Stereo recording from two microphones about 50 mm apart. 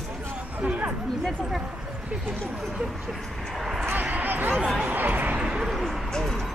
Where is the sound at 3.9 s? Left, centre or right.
Right.